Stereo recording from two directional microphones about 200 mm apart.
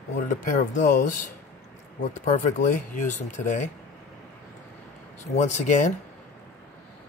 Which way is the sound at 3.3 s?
35° left (ahead or behind).